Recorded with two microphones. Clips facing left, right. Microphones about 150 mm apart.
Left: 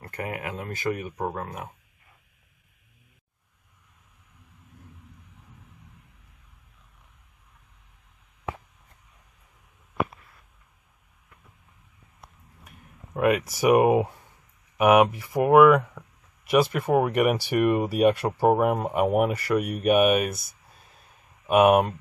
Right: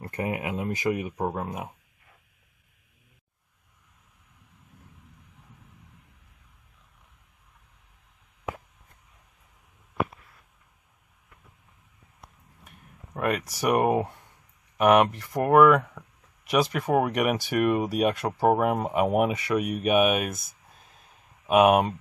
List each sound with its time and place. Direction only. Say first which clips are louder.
0.0 s speech: right 3 dB; 20° right (ahead or behind)
13.1 s a sound: left 5 dB; 5° left (ahead or behind)
13.6 s speech: left 4 dB; 5° left (ahead or behind)